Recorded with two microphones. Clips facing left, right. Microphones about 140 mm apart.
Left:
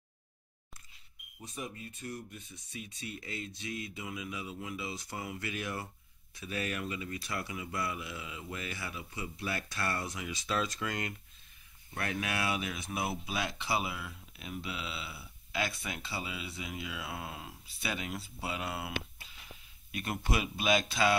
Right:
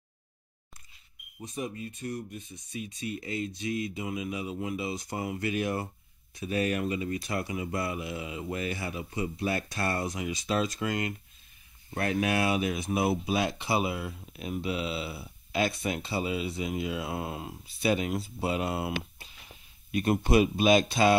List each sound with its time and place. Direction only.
1.4 s speech: 20° right (ahead or behind)
3.6 s mantra: 30° left (ahead or behind)
3.9 s speech: 20° right (ahead or behind)
7.8 s speech: 25° right (ahead or behind)
11.9 s speech: 30° right (ahead or behind)